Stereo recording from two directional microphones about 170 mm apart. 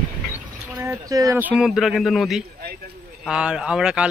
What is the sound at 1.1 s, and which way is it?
Speech, 20° right (ahead or behind).